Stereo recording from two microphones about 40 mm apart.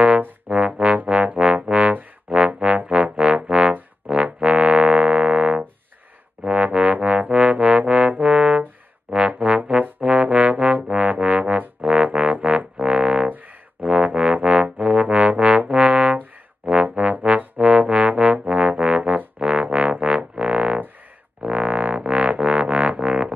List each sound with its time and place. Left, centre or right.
0.5 s music: right
6.6 s music: right
9.8 s trombone: right
10.9 s music: right
12.7 s music: right
21.5 s music: right